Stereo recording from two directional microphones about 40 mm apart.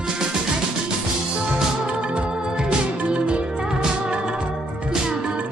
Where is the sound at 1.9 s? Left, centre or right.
Right.